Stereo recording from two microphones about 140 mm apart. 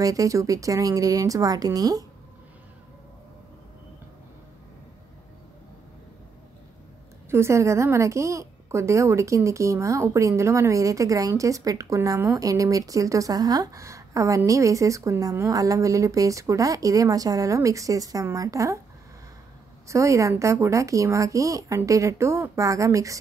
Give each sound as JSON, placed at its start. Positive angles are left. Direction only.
{"t": 0.0, "sound": "a woman's voice", "side_deg": -25}
{"t": 7.2, "sound": "a woman's voice", "side_deg": -20}
{"t": 19.9, "sound": "a woman's voice", "side_deg": -20}